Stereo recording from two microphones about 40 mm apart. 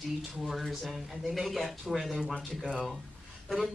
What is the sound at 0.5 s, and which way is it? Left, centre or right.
Speech, centre.